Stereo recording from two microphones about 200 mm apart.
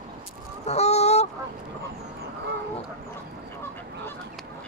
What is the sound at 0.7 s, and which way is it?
Honk, 30° left (ahead or behind).